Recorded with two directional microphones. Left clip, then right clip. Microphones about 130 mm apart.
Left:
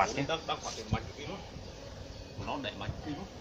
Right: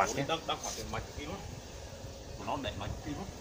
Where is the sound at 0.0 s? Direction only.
5° right (ahead or behind).